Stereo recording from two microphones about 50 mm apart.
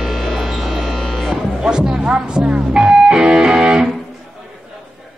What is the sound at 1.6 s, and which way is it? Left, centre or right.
Music, centre.